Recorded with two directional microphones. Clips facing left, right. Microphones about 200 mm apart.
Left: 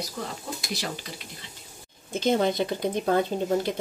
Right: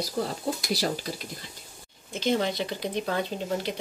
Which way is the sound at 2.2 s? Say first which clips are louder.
Left 3 dB; 50° left (ahead or behind).